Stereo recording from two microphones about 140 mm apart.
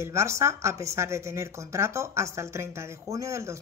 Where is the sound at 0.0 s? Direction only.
20° right (ahead or behind).